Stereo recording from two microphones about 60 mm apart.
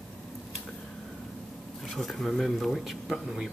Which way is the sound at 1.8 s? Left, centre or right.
Centre.